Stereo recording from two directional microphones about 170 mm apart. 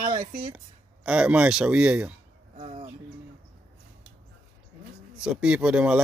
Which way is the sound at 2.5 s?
40° right (ahead or behind).